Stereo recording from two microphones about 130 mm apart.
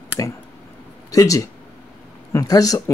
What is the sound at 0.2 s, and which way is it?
Speech, 25° left (ahead or behind).